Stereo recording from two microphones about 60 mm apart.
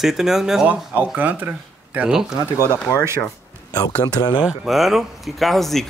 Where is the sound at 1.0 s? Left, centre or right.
Right.